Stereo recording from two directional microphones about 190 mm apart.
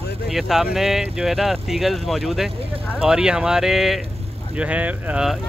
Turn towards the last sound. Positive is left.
turn(degrees=-5)  # may be behind; listen again after turning